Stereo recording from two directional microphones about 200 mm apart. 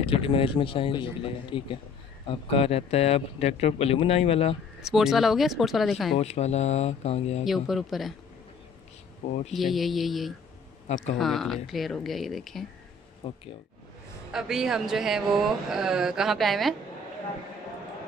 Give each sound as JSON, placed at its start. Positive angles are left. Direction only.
{"t": 0.0, "sound": "a man's voice", "side_deg": 25}
{"t": 4.8, "sound": "speech", "side_deg": 0}
{"t": 6.1, "sound": "speech", "side_deg": 35}
{"t": 7.4, "sound": "speech", "side_deg": 0}
{"t": 9.5, "sound": "speech", "side_deg": 0}
{"t": 13.2, "sound": "a man's voice", "side_deg": 30}
{"t": 14.3, "sound": "speech", "side_deg": -5}